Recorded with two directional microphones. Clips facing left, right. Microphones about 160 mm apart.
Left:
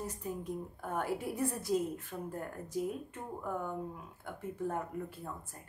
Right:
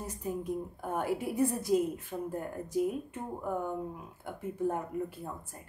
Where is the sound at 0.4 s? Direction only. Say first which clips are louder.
Right 4 dB; 15° right (ahead or behind).